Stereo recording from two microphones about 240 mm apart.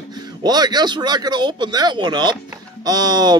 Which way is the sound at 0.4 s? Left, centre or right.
Centre.